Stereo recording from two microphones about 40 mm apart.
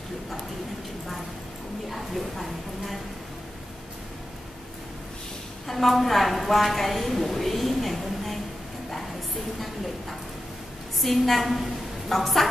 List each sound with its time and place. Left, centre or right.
1.9 s speech: centre
5.7 s a woman's voice: centre
11.0 s a woman's voice: centre